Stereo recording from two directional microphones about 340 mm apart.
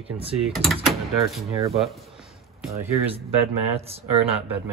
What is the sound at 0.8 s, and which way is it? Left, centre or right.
Speech, centre.